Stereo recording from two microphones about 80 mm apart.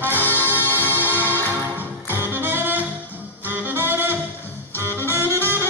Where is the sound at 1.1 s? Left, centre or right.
Right.